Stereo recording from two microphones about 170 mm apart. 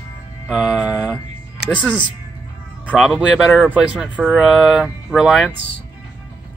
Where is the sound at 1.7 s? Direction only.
10° left (ahead or behind).